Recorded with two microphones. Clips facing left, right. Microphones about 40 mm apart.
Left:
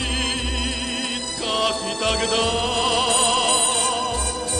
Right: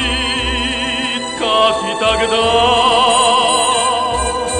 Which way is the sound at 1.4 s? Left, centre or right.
Right.